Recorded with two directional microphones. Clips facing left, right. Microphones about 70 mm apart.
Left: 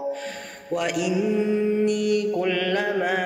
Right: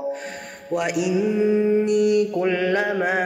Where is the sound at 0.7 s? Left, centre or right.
Centre.